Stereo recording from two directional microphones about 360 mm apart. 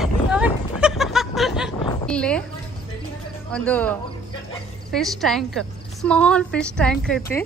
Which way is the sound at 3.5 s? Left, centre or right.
Centre.